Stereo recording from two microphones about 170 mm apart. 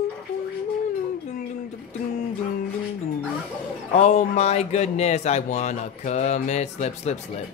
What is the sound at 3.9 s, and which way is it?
Speech, 45° left (ahead or behind).